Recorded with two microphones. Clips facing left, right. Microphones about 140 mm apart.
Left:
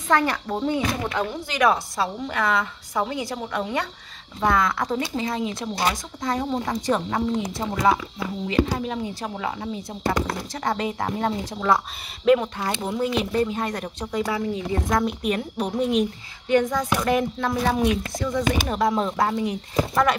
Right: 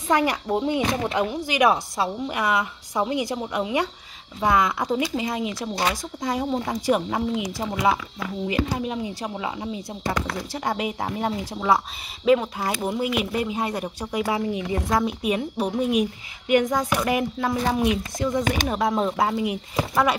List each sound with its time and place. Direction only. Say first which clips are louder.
0.1 s a woman's voice: right 1 dB; 15° right (ahead or behind)
8.5 s a woman's voice: left 2 dB; 15° right (ahead or behind)
14.9 s a woman's voice: even; 5° right (ahead or behind)
18.7 s a woman's voice: even; centre (ahead or behind)